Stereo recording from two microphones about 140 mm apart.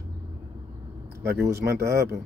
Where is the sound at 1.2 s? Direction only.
15° right (ahead or behind).